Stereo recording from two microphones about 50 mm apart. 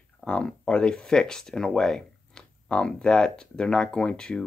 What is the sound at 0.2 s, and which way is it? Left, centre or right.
Speech, centre.